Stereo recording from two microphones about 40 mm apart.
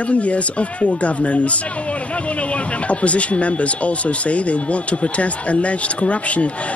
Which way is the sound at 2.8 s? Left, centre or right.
Left.